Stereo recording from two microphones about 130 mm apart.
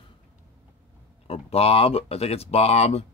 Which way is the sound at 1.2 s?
50° left (ahead or behind).